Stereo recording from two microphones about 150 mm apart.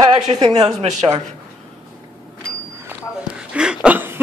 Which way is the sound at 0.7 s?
45° right (ahead or behind).